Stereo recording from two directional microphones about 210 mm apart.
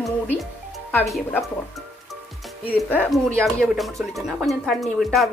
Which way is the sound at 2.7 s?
10° left (ahead or behind).